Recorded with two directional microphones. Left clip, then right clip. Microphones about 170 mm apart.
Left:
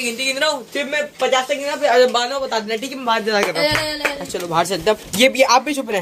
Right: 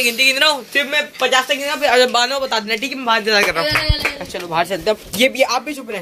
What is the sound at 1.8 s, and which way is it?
Speech, 25° right (ahead or behind).